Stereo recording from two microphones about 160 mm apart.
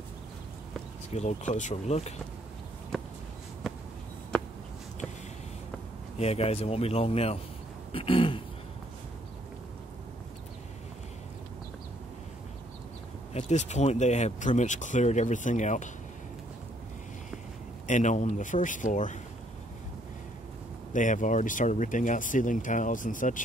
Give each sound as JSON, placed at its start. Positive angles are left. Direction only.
{"t": 1.1, "sound": "speech", "side_deg": 45}
{"t": 6.1, "sound": "speech", "side_deg": 40}
{"t": 13.3, "sound": "speech", "side_deg": 45}
{"t": 17.8, "sound": "speech", "side_deg": 50}
{"t": 20.9, "sound": "speech", "side_deg": 55}